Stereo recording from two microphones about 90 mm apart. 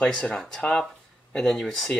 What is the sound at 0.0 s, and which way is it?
Speech, 10° left (ahead or behind).